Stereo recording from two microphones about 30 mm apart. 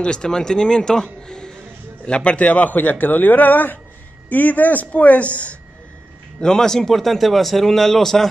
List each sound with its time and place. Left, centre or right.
0.0 s a man's voice: left
2.3 s a man's voice: left
4.3 s speech: left
6.4 s a man's voice: left